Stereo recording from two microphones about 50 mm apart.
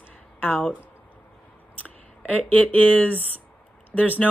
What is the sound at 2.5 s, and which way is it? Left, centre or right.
Speech, left.